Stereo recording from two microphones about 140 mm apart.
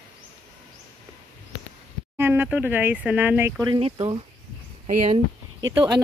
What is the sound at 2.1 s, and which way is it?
Speech, 15° right (ahead or behind).